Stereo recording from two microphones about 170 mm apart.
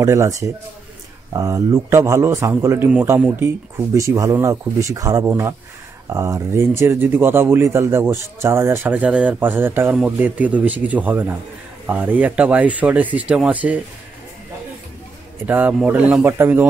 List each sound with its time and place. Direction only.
0.0 s speech: 15° right (ahead or behind)
15.4 s speech: 10° right (ahead or behind)